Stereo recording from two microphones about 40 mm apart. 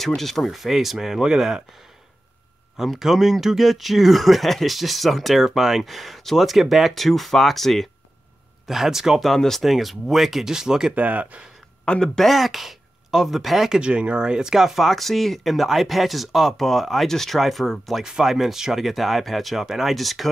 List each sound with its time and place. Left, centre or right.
0.0 s speech: centre
3.0 s speech: centre
8.6 s speech: centre
9.2 s speech: centre
9.6 s speech: centre
11.0 s speech: right
11.8 s speech: left
12.2 s speech: centre
13.7 s speech: right
14.5 s speech: centre
18.0 s speech: centre